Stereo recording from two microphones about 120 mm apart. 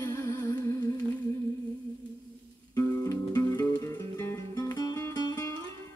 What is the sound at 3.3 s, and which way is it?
Music, 30° left (ahead or behind).